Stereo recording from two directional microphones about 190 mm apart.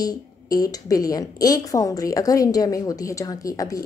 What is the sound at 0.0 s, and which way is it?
A woman's voice, 20° left (ahead or behind).